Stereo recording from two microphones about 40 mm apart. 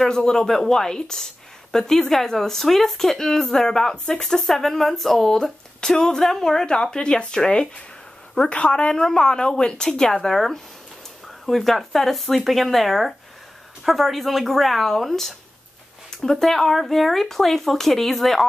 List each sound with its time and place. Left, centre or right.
0.0 s speech: centre
6.6 s speech: centre